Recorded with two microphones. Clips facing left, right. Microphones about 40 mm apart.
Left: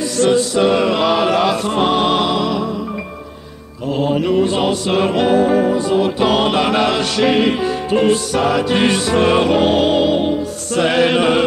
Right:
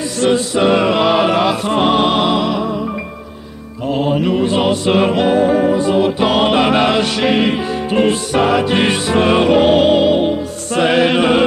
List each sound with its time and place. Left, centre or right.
0.2 s music: centre
4.1 s music: centre